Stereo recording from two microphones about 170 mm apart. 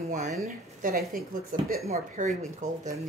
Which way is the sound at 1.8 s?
45° right (ahead or behind).